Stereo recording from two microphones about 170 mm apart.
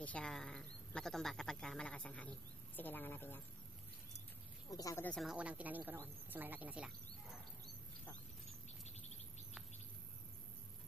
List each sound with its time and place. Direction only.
0.0 s a woman's voice: 5° left (ahead or behind)
4.6 s speech: 20° left (ahead or behind)
5.1 s a woman's voice: 5° right (ahead or behind)